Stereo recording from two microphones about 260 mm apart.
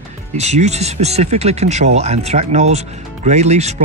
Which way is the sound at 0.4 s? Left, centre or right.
Right.